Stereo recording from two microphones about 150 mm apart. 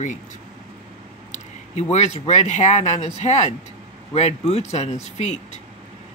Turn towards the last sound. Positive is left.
turn(degrees=50)  # may be behind; listen again after turning